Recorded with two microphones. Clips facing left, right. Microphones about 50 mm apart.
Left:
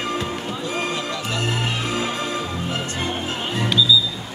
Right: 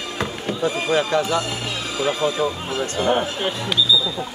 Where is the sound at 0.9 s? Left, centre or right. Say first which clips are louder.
Right 7 dB; right.